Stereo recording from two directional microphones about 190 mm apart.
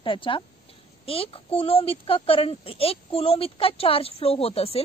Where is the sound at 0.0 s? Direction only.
25° left (ahead or behind).